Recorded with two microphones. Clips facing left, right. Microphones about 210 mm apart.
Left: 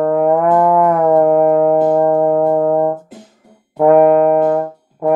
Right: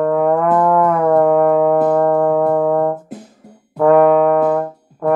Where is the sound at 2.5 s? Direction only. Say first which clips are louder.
Left 1 dB; 5° left (ahead or behind).